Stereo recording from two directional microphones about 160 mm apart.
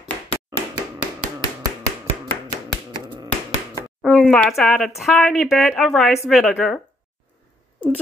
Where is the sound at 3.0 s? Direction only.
25° right (ahead or behind).